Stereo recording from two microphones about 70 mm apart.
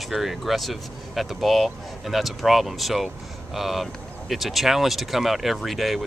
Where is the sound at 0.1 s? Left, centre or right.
Centre.